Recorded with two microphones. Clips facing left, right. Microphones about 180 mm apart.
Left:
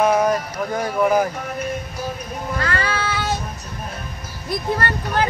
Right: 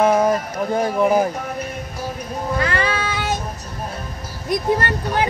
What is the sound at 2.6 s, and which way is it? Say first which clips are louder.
Child singing: right 1 dB; 20° right (ahead or behind).